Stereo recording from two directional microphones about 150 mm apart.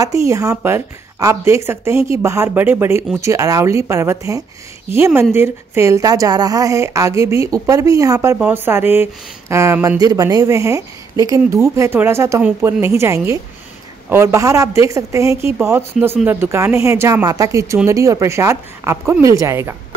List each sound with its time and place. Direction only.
0.0 s speech: 20° right (ahead or behind)
16.0 s speech: 5° right (ahead or behind)
16.3 s speech: 15° right (ahead or behind)